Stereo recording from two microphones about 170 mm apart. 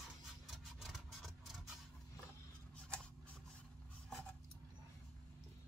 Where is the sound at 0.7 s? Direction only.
Centre (ahead or behind).